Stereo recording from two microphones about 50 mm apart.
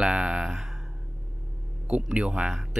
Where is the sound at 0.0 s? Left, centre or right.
Centre.